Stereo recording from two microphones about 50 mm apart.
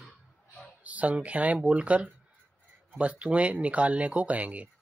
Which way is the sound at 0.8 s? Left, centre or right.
Right.